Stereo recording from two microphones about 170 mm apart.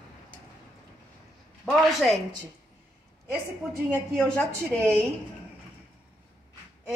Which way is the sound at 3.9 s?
5° left (ahead or behind).